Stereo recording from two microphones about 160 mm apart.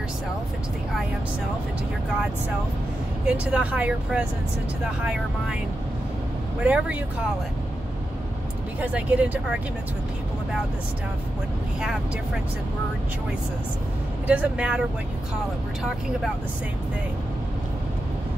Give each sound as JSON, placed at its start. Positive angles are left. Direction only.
{"t": 3.3, "sound": "speech", "side_deg": -10}
{"t": 6.6, "sound": "speech", "side_deg": -5}
{"t": 8.8, "sound": "speech", "side_deg": -10}
{"t": 14.2, "sound": "speech", "side_deg": -10}